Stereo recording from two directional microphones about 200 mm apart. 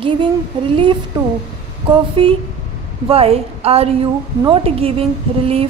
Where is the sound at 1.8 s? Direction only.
25° right (ahead or behind).